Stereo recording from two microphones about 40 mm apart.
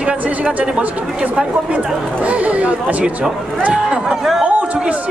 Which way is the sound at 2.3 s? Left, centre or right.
Right.